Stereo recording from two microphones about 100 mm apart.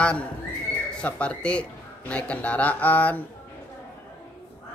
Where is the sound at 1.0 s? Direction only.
10° left (ahead or behind).